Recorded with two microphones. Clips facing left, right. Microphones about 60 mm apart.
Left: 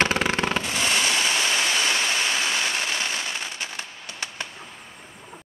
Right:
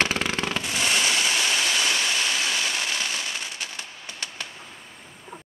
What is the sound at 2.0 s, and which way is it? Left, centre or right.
Fireworks, left.